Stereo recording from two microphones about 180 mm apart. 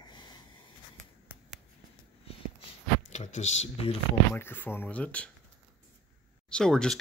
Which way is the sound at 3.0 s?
40° left (ahead or behind).